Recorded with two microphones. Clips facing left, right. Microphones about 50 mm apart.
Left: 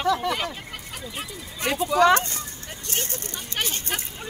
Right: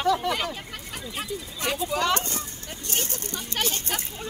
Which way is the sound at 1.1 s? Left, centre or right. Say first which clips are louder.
Right 2 dB; centre.